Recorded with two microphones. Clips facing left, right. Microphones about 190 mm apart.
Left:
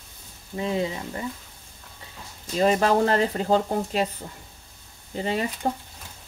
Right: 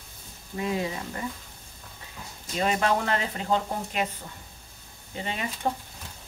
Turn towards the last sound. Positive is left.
turn(degrees=35)  # may be behind; listen again after turning